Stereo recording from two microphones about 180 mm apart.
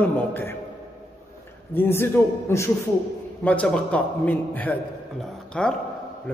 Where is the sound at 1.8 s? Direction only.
15° left (ahead or behind).